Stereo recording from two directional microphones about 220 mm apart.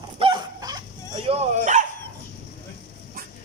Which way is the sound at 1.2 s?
30° right (ahead or behind).